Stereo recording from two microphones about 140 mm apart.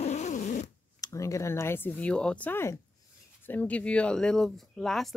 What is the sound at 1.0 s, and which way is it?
Speech, 20° left (ahead or behind).